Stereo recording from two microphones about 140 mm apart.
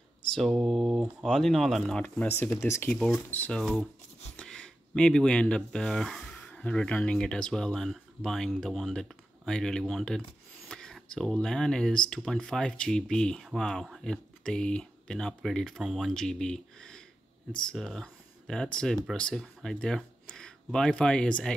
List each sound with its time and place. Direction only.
0.3 s speech: centre (ahead or behind)